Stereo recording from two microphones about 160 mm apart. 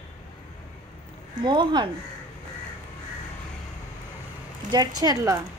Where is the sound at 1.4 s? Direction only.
30° right (ahead or behind).